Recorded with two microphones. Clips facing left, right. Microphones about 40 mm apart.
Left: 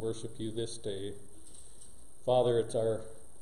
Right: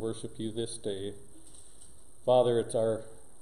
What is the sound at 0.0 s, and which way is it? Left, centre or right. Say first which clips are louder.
Speech: right 1 dB; centre.